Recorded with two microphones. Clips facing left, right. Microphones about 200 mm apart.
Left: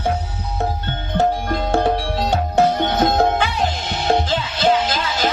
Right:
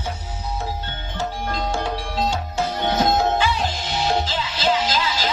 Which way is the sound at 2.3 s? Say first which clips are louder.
Left 8 dB; 60° left (ahead or behind).